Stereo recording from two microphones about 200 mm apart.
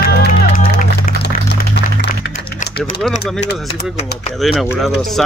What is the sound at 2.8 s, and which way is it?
Speech, centre (ahead or behind).